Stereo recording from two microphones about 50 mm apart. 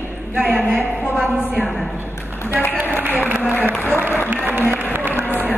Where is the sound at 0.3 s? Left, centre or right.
Right.